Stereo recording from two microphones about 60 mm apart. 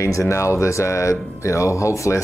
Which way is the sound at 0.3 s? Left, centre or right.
Left.